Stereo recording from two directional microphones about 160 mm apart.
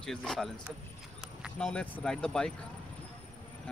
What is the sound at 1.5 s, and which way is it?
Speech, 5° left (ahead or behind).